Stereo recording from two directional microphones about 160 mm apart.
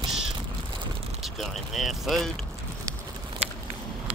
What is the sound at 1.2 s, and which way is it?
Speech, centre (ahead or behind).